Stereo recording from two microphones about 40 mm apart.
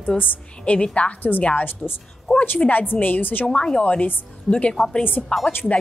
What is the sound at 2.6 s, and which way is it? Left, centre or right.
Speech, left.